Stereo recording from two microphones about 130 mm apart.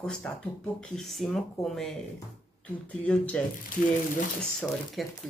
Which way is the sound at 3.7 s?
90° left.